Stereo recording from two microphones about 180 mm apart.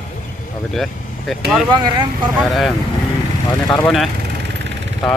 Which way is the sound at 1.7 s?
25° right (ahead or behind).